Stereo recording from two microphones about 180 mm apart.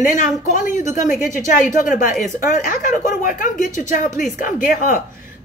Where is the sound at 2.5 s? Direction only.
45° left (ahead or behind).